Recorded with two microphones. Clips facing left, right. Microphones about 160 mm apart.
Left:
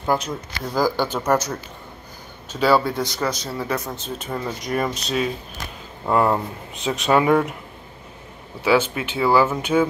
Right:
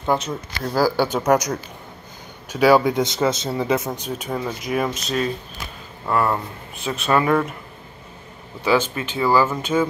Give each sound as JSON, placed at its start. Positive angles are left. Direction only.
{"t": 0.0, "sound": "speech", "side_deg": -5}
{"t": 2.5, "sound": "speech", "side_deg": -10}
{"t": 6.0, "sound": "speech", "side_deg": 20}
{"t": 9.1, "sound": "speech", "side_deg": 15}